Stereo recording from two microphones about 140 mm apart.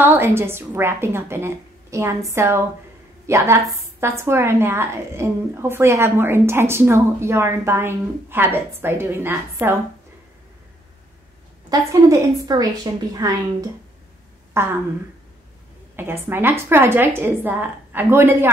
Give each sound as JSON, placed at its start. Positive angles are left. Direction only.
{"t": 0.0, "sound": "a woman's voice", "side_deg": -15}
{"t": 11.7, "sound": "a woman's voice", "side_deg": -20}
{"t": 16.0, "sound": "a woman's voice", "side_deg": -15}